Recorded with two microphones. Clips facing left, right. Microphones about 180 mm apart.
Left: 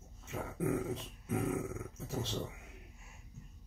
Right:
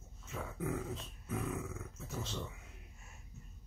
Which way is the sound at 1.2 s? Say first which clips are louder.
Left 5 dB; 65° left (ahead or behind).